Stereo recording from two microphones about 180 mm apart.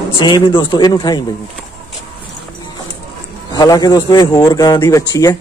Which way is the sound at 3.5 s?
20° left (ahead or behind).